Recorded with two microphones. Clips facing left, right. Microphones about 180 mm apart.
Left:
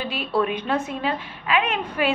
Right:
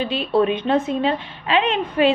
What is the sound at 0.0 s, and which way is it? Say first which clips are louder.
A woman's voice: right 5 dB; 25° right (ahead or behind).